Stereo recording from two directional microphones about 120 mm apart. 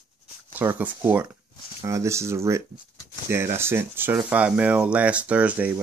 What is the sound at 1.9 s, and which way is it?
Speech, 25° right (ahead or behind).